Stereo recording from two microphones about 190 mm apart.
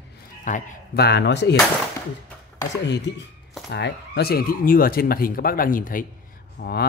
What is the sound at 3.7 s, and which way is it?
Speech, 60° left (ahead or behind).